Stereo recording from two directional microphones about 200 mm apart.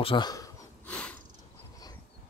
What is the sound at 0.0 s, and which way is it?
Speech, 25° left (ahead or behind).